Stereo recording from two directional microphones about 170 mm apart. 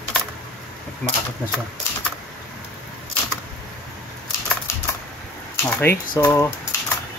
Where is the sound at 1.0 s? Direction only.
5° left (ahead or behind).